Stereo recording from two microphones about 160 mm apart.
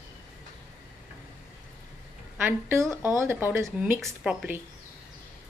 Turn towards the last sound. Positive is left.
turn(degrees=-5)  # may be behind; listen again after turning